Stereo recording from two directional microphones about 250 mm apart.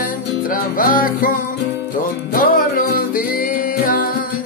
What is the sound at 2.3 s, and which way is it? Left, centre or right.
Music, left.